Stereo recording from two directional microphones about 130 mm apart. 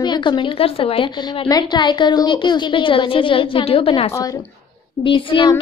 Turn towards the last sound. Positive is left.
turn(degrees=40)  # may be behind; listen again after turning